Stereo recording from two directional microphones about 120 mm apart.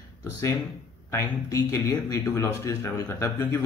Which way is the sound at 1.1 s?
25° left (ahead or behind).